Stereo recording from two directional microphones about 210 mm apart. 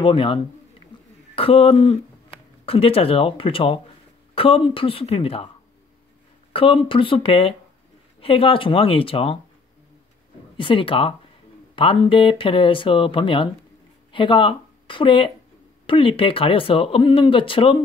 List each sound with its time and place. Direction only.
0.0 s speech: 25° left (ahead or behind)
0.9 s a sound: 25° left (ahead or behind)
1.3 s speech: 25° left (ahead or behind)
6.5 s speech: 25° left (ahead or behind)
10.6 s speech: 25° left (ahead or behind)